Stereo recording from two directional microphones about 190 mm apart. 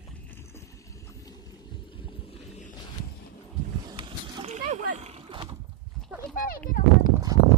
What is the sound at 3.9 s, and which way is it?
Wild animals, 25° right (ahead or behind).